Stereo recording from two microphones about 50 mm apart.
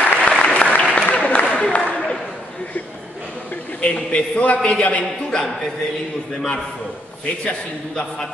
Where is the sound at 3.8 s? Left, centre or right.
Left.